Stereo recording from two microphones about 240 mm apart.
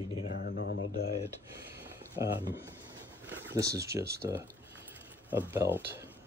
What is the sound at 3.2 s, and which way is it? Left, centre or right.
Speech, centre.